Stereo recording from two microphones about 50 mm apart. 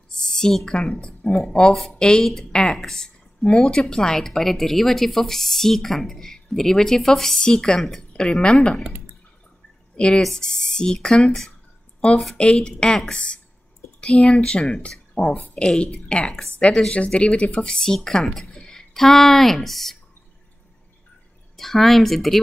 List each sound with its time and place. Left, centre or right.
0.2 s a sound: centre
0.7 s speech: centre
9.9 s speech: centre
21.5 s speech: centre